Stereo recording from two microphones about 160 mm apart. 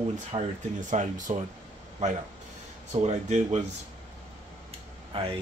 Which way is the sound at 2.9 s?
45° right (ahead or behind).